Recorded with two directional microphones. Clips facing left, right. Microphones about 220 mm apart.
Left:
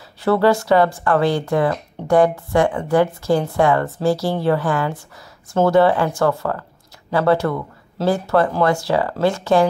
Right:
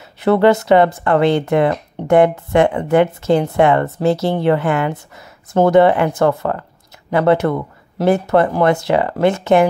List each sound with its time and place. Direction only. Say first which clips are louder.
0.2 s speech: right 3 dB; 20° right (ahead or behind)